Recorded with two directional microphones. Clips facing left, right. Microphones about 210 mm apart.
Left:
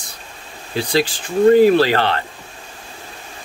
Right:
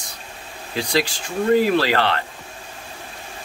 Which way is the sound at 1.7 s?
30° left (ahead or behind).